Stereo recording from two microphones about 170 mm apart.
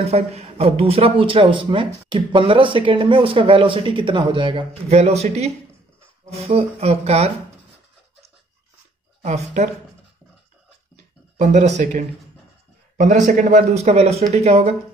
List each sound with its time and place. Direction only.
0.0 s speech: 35° right (ahead or behind)
9.2 s speech: 40° right (ahead or behind)
11.3 s speech: 45° right (ahead or behind)